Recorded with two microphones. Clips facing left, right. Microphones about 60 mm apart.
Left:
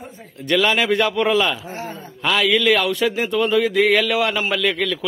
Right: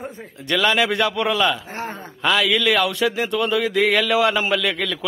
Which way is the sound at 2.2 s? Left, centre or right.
Centre.